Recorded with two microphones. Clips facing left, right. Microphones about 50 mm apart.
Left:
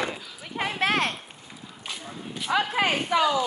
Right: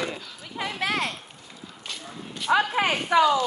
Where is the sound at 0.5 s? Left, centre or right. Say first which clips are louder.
Left 3 dB; left.